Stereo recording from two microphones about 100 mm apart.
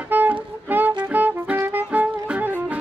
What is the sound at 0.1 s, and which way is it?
Music, 20° right (ahead or behind).